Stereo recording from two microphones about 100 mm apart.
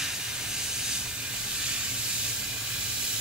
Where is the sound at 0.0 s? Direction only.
5° right (ahead or behind).